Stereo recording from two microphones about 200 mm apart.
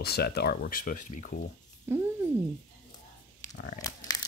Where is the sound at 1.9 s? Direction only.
10° right (ahead or behind).